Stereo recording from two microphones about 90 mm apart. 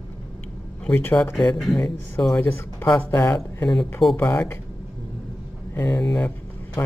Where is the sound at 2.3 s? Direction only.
25° left (ahead or behind).